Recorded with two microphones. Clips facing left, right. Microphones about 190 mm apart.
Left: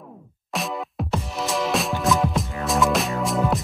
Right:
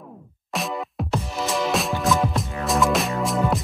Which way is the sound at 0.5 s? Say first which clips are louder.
Even; centre (ahead or behind).